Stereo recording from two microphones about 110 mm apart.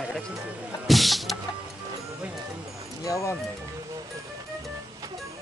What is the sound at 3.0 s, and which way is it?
Speech, 30° left (ahead or behind).